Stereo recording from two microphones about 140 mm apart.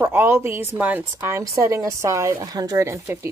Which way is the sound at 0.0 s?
15° right (ahead or behind).